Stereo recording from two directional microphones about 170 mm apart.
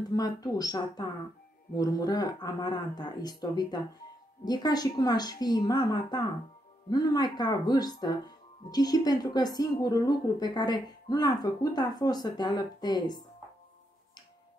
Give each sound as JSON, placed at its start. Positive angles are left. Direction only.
{"t": 0.1, "sound": "speech", "side_deg": 20}